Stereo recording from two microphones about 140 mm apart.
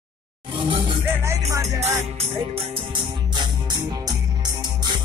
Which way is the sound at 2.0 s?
45° right (ahead or behind).